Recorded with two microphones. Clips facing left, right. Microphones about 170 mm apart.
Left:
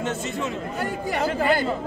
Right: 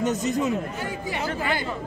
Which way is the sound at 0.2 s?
40° right (ahead or behind).